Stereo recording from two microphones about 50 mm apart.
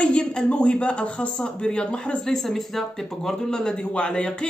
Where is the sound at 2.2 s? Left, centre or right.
Centre.